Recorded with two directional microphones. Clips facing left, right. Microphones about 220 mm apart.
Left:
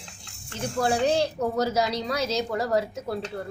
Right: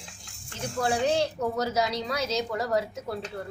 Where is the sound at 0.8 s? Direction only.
35° left (ahead or behind).